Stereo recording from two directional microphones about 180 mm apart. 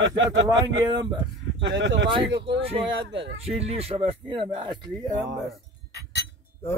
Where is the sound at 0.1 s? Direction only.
90° right.